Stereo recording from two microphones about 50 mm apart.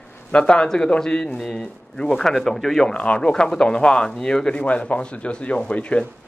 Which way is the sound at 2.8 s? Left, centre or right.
Left.